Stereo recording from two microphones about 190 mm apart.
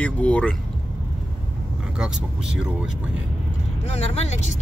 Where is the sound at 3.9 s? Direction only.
35° left (ahead or behind).